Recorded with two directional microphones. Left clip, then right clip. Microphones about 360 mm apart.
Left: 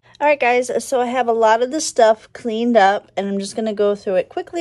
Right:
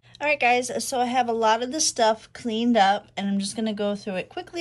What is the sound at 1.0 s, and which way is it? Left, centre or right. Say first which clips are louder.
Speech: left 4 dB; centre.